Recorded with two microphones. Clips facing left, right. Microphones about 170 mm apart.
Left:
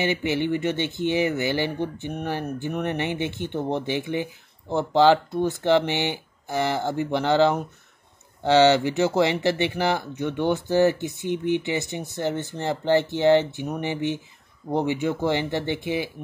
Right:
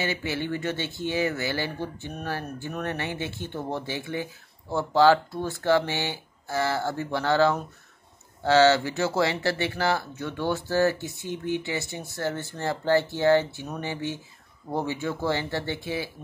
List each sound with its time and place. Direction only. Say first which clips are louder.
0.0 s speech: left 5 dB; 20° left (ahead or behind)